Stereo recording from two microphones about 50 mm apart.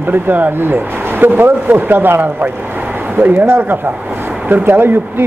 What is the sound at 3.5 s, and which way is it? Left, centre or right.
Speech, right.